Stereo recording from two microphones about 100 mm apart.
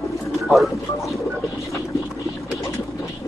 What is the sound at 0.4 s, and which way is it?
Speech, centre (ahead or behind).